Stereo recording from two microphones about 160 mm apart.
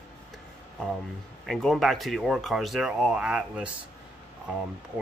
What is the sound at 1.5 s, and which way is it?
Speech, centre (ahead or behind).